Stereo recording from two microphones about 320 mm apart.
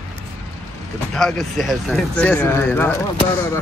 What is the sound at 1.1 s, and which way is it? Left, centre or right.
Speech, centre.